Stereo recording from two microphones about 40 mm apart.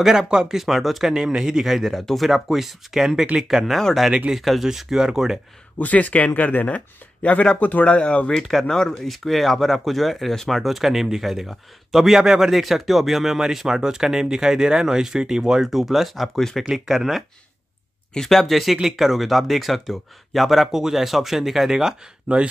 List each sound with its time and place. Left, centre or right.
0.0 s speech: centre
0.6 s speech: centre
1.1 s speech: centre
1.7 s speech: centre
5.8 s speech: left
7.6 s speech: left
8.4 s speech: centre
10.6 s speech: centre
16.3 s speech: centre
16.7 s speech: centre
18.1 s speech: centre
22.3 s speech: right